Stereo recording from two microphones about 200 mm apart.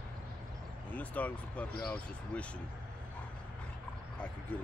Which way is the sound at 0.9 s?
5° left (ahead or behind).